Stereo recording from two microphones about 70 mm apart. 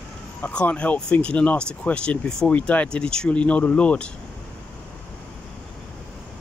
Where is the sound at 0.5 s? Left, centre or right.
Centre.